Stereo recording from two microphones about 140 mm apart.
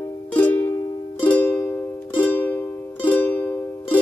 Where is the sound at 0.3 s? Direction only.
10° left (ahead or behind).